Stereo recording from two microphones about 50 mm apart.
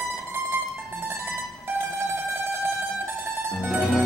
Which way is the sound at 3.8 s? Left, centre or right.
Centre.